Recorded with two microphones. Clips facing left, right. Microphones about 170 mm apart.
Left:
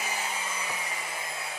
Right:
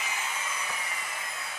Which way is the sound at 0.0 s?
35° left (ahead or behind).